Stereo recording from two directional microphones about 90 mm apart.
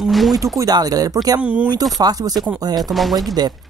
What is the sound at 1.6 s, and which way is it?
Speech, 45° right (ahead or behind).